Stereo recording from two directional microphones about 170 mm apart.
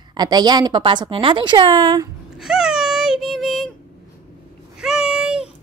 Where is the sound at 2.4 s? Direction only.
5° right (ahead or behind).